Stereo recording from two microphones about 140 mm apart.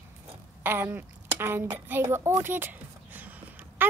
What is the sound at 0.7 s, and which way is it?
A woman's voice, 10° right (ahead or behind).